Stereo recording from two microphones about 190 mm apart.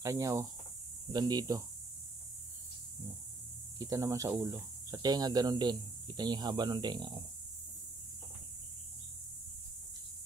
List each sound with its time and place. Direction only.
0.0 s speech: 15° right (ahead or behind)
3.7 s speech: 15° right (ahead or behind)